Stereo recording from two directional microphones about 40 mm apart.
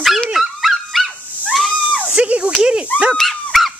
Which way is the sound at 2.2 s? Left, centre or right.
Right.